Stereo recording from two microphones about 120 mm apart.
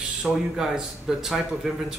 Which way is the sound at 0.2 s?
5° right (ahead or behind).